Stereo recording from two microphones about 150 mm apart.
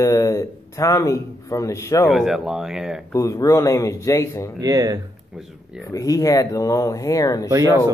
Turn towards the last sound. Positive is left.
turn(degrees=-20)  # may be behind; listen again after turning